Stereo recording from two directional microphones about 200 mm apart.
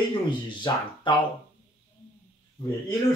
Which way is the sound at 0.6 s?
25° left (ahead or behind).